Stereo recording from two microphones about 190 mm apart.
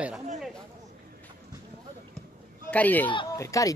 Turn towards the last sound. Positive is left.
turn(degrees=15)  # may be behind; listen again after turning